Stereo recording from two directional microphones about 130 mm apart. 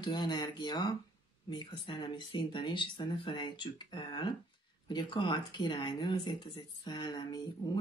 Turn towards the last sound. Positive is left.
turn(degrees=35)  # may be behind; listen again after turning